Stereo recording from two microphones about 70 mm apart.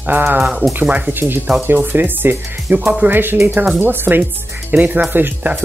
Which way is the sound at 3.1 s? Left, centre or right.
Right.